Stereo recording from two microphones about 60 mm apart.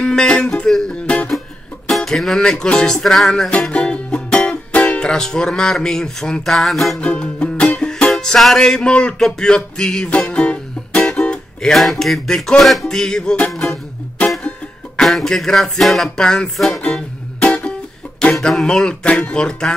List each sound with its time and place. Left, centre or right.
0.0 s speech: centre
0.8 s music: centre
1.9 s music: centre
3.7 s music: centre
7.0 s music: centre
11.7 s music: centre
15.0 s music: centre
16.5 s speech: centre
16.9 s music: centre
18.5 s music: centre